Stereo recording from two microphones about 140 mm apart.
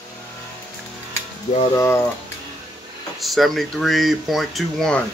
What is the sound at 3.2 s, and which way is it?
Speech, centre (ahead or behind).